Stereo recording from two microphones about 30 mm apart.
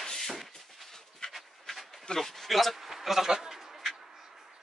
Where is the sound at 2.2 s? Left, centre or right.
Centre.